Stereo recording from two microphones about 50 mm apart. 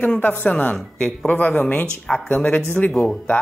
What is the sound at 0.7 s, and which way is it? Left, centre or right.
Speech, centre.